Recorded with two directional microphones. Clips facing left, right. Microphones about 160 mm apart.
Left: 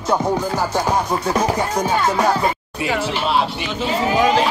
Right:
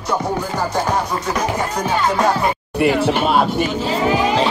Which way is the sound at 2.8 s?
55° right (ahead or behind).